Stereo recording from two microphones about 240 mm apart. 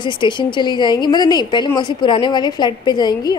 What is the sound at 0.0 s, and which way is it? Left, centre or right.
A woman's voice, centre.